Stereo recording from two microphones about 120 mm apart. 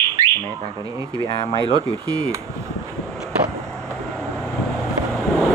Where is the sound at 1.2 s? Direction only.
40° left (ahead or behind).